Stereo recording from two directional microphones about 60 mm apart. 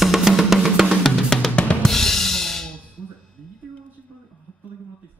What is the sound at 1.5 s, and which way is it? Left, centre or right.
Drum kit, centre.